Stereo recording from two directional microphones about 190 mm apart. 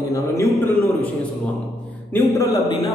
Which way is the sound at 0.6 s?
15° left (ahead or behind).